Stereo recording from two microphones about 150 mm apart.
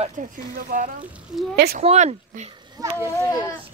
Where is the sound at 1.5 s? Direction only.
90° right.